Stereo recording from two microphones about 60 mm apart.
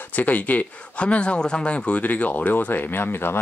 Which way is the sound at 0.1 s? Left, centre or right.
Left.